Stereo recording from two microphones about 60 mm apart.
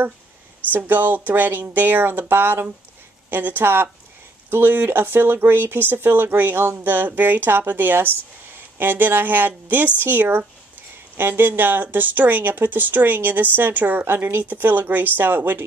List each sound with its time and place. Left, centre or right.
0.7 s speech: right